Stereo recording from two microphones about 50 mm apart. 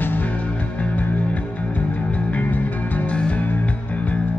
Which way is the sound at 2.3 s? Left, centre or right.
Left.